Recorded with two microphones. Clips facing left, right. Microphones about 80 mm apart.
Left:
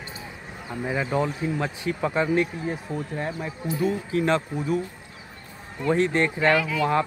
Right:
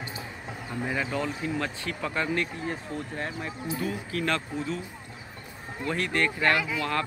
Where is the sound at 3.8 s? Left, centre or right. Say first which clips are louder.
Left 8 dB; left.